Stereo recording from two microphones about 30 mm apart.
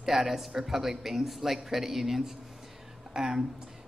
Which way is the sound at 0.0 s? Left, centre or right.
Centre.